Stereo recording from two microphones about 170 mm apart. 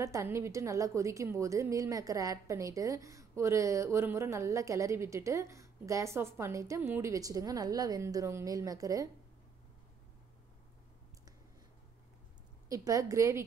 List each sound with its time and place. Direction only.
0.0 s a woman's voice: 15° right (ahead or behind)
12.6 s a woman's voice: 20° right (ahead or behind)